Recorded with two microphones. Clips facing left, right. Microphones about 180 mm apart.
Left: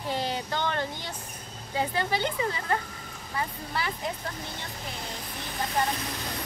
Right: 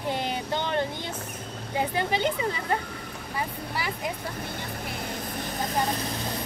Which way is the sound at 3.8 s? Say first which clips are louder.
Even; 10° right (ahead or behind).